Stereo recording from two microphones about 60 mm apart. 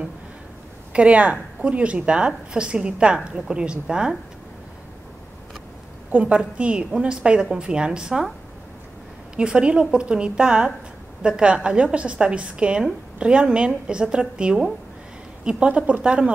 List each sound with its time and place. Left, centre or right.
0.9 s a woman's voice: right
6.1 s a woman's voice: right
9.4 s a woman's voice: centre